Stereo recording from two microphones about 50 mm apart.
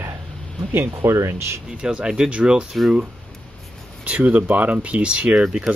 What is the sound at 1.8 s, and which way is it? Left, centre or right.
Speech, centre.